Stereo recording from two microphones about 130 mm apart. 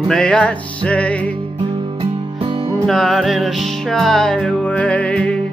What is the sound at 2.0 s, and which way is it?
Music, 40° right (ahead or behind).